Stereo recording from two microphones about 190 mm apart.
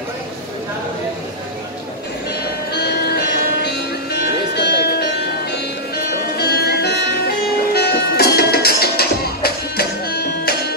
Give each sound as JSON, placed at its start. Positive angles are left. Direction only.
{"t": 2.7, "sound": "music", "side_deg": 60}